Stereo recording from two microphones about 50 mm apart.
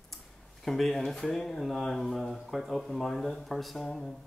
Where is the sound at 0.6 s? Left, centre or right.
Centre.